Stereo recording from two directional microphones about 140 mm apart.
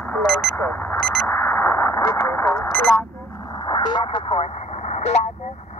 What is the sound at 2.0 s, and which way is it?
Radio, 25° left (ahead or behind).